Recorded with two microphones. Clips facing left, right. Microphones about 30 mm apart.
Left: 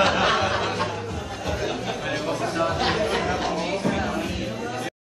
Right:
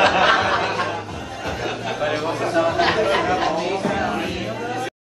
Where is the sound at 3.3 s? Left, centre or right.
Right.